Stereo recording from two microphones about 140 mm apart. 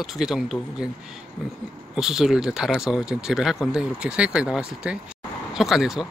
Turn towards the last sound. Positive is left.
turn(degrees=0)  # may be behind; listen again after turning